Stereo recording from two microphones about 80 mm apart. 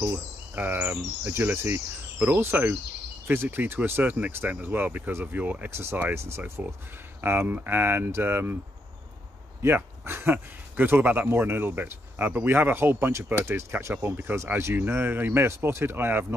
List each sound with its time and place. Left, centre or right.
0.0 s speech: right
9.6 s speech: right